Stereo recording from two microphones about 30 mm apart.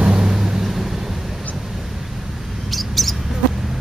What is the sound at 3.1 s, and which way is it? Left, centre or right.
Mouse, centre.